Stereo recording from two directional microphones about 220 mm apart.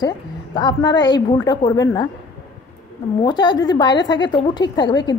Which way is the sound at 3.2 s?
20° left (ahead or behind).